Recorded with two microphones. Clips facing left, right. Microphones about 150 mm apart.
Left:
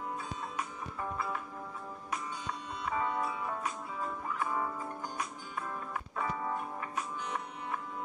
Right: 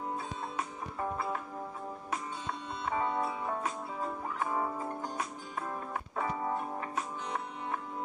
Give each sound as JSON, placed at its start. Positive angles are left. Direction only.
{"t": 2.8, "sound": "music", "side_deg": -25}
{"t": 6.2, "sound": "music", "side_deg": -20}